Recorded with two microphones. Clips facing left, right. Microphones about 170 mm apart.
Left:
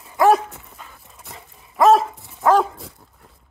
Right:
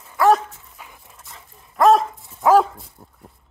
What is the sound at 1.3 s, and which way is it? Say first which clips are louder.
Dog: left 4 dB; 65° left (ahead or behind).